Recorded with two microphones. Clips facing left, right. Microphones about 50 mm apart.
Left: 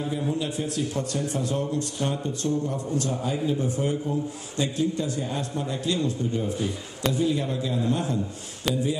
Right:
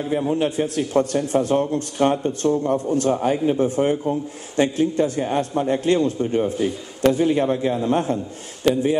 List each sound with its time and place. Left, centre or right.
0.3 s a man's voice: right